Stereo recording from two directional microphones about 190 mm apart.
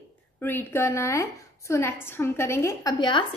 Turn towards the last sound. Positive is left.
turn(degrees=25)  # may be behind; listen again after turning